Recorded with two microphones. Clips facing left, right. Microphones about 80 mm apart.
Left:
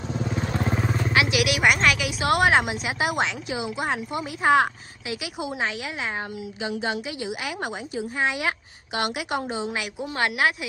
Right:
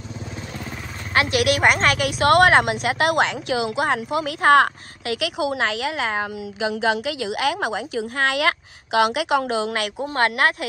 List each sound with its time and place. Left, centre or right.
1.1 s a woman's voice: right
9.9 s speech: right